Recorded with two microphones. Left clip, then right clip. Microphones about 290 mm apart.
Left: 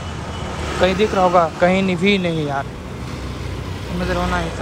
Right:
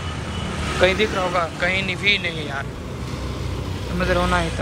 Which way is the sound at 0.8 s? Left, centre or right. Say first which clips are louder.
Left 3 dB; centre.